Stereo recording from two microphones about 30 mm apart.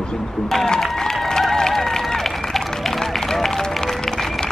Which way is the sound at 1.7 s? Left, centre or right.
Centre.